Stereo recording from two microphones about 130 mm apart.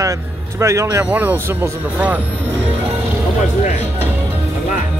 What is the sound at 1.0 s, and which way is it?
Speech, 15° right (ahead or behind).